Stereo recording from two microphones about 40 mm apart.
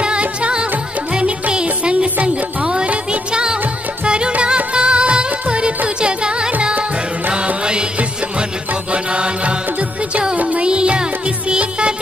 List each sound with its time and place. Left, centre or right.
0.0 s music: right
4.0 s music: right
8.9 s mantra: right
10.3 s music: right
10.7 s music: right